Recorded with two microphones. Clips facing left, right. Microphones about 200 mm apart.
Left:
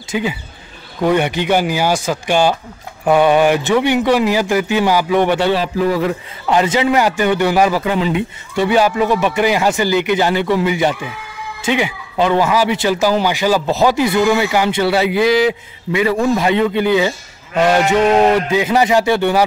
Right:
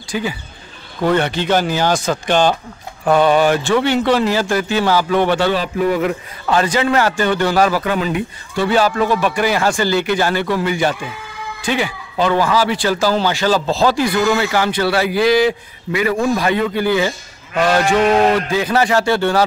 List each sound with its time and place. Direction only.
0.1 s a man's voice: 20° left (ahead or behind)
6.5 s a man's voice: 20° left (ahead or behind)